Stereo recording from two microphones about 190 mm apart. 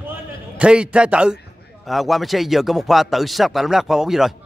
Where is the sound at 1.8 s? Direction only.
Centre (ahead or behind).